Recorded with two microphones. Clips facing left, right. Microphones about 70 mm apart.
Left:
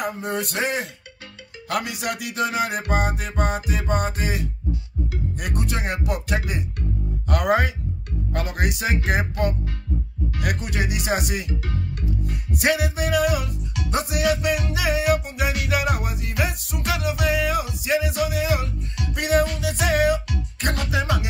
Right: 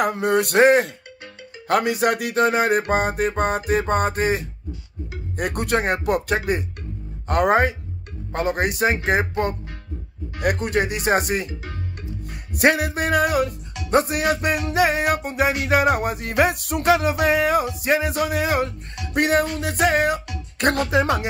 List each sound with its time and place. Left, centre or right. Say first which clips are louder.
0.0 s speech: right 7 dB; right
1.7 s music: right 7 dB; right
16.8 s music: right 6 dB; right